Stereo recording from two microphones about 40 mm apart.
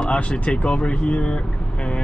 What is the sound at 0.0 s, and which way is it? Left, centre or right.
Speech, left.